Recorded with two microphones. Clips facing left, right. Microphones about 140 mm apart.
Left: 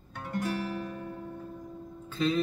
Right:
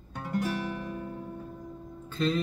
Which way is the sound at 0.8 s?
25° right (ahead or behind).